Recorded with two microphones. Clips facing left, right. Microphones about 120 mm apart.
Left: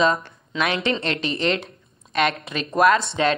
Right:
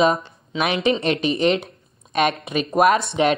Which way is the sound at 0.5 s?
20° right (ahead or behind).